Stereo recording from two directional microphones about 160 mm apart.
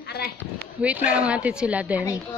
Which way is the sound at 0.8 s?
10° right (ahead or behind).